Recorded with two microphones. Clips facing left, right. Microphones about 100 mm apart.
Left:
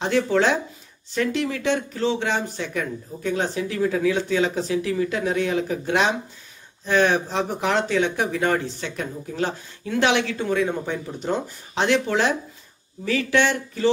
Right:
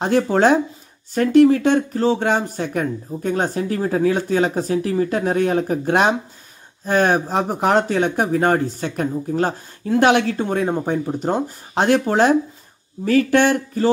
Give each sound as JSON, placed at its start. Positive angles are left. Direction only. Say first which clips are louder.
{"t": 0.0, "sound": "speech", "louder": "right 4 dB", "side_deg": -45}